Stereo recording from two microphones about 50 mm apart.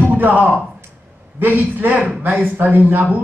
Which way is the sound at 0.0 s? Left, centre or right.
Right.